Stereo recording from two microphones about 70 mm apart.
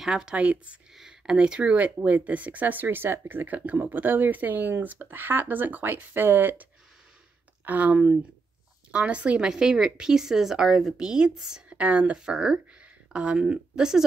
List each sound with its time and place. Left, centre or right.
0.0 s speech: centre
0.9 s a sound: centre
1.3 s speech: centre
11.7 s speech: centre